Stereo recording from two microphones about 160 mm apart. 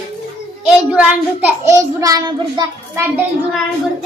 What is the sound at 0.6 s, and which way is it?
A child's voice, 5° right (ahead or behind).